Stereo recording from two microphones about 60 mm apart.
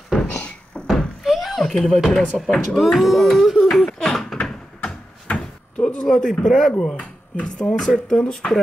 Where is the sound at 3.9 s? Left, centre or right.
Centre.